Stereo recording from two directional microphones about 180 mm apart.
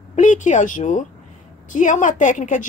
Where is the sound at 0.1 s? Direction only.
45° left (ahead or behind).